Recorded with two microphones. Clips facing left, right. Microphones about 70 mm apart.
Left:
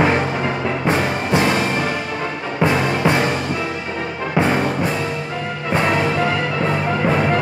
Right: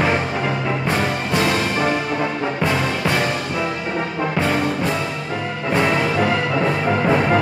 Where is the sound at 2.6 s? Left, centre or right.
Left.